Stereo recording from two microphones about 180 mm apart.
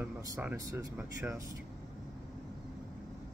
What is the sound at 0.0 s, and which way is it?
Speech, 10° right (ahead or behind).